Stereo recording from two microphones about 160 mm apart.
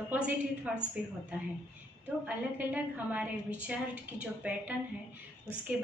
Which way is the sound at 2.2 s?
10° right (ahead or behind).